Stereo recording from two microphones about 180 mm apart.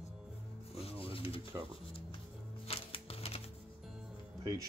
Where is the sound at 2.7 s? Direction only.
30° left (ahead or behind).